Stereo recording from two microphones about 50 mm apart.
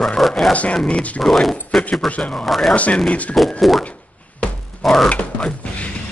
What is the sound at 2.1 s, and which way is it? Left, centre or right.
Speech, left.